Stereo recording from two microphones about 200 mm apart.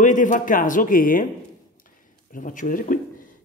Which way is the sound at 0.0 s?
40° left (ahead or behind).